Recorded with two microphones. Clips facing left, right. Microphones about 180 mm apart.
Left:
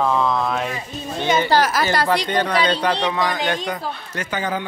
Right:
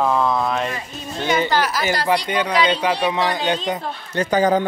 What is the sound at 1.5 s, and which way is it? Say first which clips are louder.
Speech: left 3 dB; 45° left (ahead or behind).